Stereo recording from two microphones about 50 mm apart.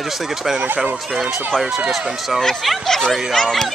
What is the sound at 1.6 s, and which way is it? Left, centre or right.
Speech, centre.